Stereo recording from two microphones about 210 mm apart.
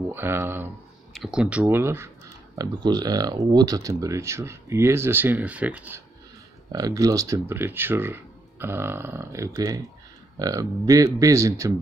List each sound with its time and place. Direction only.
0.1 s speech: 10° right (ahead or behind)